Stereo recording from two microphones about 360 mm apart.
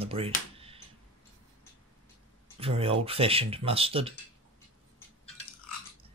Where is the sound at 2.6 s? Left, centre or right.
Centre.